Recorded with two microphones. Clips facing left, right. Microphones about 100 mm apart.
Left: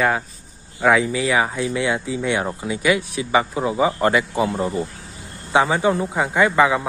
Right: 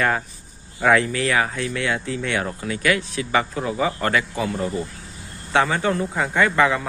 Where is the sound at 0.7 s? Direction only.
5° left (ahead or behind).